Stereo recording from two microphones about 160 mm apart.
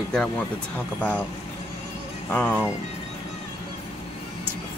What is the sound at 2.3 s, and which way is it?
Speech, 10° left (ahead or behind).